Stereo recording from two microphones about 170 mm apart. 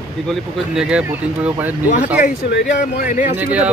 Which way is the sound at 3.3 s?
10° right (ahead or behind).